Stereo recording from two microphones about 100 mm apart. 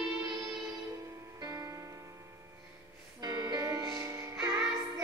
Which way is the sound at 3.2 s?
45° right (ahead or behind).